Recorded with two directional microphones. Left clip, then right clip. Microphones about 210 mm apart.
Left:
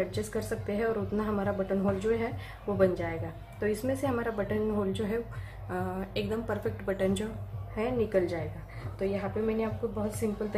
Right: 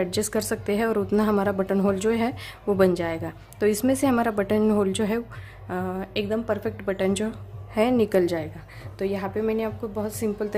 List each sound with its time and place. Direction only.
0.1 s a woman's voice: 45° right (ahead or behind)
5.7 s a woman's voice: 35° right (ahead or behind)
7.7 s a woman's voice: 50° right (ahead or behind)